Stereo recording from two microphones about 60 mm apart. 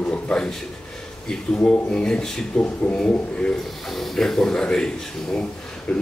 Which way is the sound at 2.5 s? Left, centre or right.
Left.